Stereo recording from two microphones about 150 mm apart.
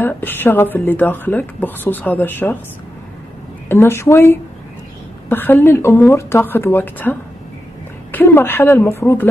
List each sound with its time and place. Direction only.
0.0 s speech: 15° left (ahead or behind)
3.6 s speech: 15° left (ahead or behind)